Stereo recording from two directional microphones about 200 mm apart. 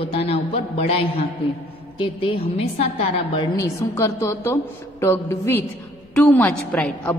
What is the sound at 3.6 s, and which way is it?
A woman's voice, 15° left (ahead or behind).